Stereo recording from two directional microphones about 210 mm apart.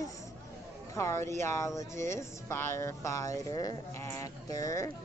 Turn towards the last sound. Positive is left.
turn(degrees=15)  # may be behind; listen again after turning